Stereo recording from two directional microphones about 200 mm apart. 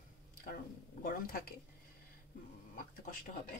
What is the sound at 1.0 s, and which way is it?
Speech, 45° left (ahead or behind).